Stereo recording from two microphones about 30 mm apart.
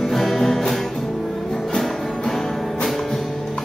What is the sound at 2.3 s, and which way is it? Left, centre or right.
Music, centre.